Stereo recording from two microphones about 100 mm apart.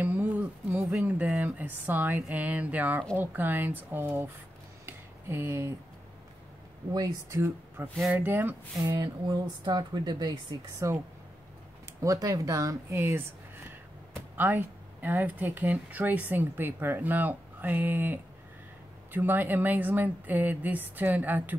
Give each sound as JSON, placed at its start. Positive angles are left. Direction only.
{"t": 0.0, "sound": "a sound", "side_deg": -20}
{"t": 1.3, "sound": "a woman's voice", "side_deg": -15}
{"t": 4.8, "sound": "a sound", "side_deg": -25}
{"t": 6.9, "sound": "a woman's voice", "side_deg": -35}
{"t": 8.8, "sound": "speech", "side_deg": -45}
{"t": 10.8, "sound": "speech", "side_deg": -30}
{"t": 12.0, "sound": "speech", "side_deg": -35}
{"t": 14.3, "sound": "a woman's voice", "side_deg": -20}